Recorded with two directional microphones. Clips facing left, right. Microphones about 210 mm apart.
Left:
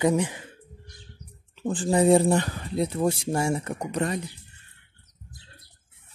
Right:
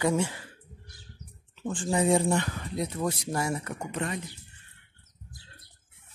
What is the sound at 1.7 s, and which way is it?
Speech, 35° left (ahead or behind).